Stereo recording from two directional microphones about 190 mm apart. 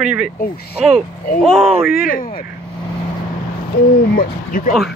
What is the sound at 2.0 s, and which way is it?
Speech, 45° left (ahead or behind).